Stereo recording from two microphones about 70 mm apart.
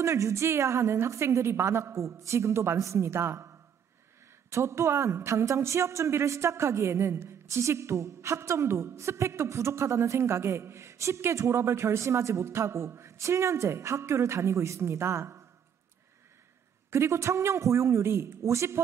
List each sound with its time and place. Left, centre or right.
0.0 s a woman's voice: right
16.9 s a woman's voice: right